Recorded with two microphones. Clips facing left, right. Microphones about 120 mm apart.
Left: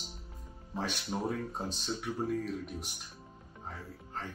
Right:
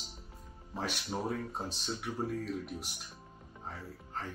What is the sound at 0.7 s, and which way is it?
Speech, centre (ahead or behind).